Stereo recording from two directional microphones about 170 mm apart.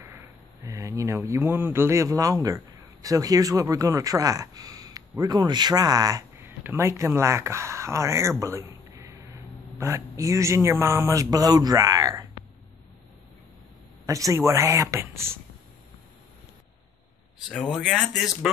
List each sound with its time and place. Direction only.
0.7 s a man's voice: 20° right (ahead or behind)
14.0 s speech: 20° right (ahead or behind)
17.5 s speech: centre (ahead or behind)